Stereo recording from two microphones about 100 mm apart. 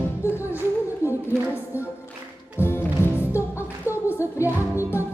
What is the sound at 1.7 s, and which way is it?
Music, 25° left (ahead or behind).